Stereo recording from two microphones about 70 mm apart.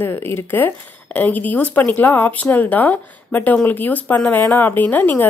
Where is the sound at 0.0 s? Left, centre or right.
Left.